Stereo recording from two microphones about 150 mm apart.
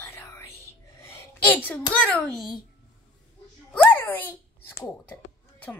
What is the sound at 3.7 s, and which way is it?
Babbling, 15° left (ahead or behind).